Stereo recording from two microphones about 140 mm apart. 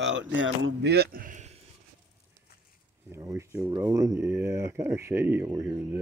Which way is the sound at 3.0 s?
20° right (ahead or behind).